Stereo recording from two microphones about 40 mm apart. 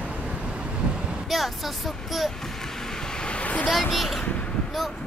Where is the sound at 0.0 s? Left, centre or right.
Right.